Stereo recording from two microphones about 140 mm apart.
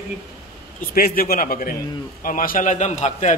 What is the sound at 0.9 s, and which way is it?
A man's voice, 90° left.